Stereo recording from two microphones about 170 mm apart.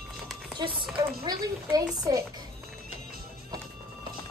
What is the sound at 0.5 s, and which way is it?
A child's voice, 30° right (ahead or behind).